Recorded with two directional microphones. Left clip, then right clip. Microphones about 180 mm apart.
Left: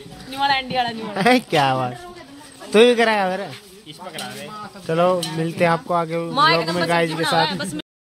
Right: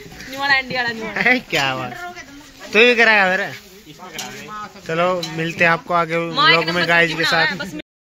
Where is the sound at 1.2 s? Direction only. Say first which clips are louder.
Left 1 dB; 35° left (ahead or behind).